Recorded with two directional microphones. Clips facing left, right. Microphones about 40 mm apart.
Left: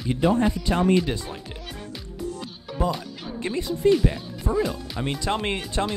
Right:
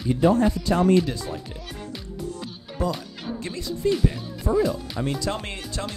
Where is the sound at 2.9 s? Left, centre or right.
Centre.